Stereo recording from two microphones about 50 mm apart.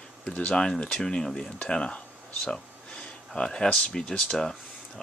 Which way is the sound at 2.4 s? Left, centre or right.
Centre.